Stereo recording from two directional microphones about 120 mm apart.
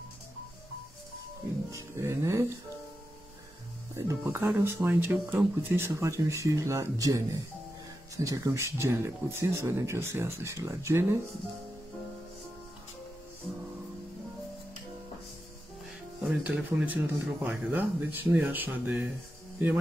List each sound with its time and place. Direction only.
1.7 s speech: 25° right (ahead or behind)
3.9 s speech: 20° right (ahead or behind)
16.3 s speech: 10° right (ahead or behind)